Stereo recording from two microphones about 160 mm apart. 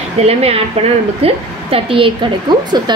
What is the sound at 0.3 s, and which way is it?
A woman's voice, 40° right (ahead or behind).